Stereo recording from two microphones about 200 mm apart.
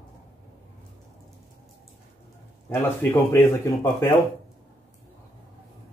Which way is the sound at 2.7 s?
10° left (ahead or behind).